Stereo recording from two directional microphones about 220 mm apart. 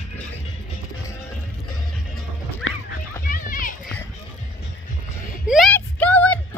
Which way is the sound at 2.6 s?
60° left (ahead or behind).